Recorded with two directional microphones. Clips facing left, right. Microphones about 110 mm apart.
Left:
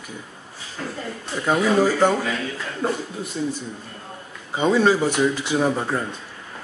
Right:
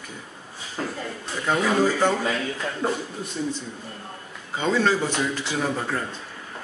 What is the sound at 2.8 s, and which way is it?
Speech, centre (ahead or behind).